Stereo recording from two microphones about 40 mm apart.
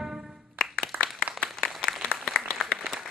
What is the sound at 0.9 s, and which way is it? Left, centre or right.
Applause, right.